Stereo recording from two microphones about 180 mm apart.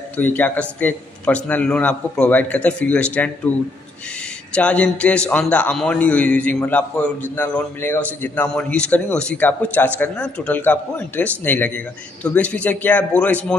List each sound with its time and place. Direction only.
0.2 s a man's voice: 10° left (ahead or behind)